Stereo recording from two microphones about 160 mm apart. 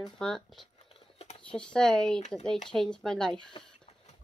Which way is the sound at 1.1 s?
40° left (ahead or behind).